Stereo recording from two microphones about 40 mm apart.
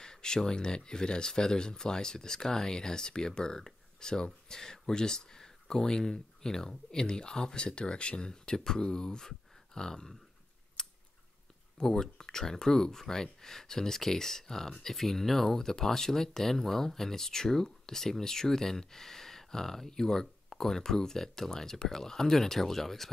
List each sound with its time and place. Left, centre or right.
0.0 s speech: centre
10.8 s scissors: centre
11.8 s speech: centre